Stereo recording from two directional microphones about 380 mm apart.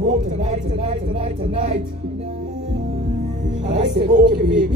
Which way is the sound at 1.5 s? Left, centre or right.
Centre.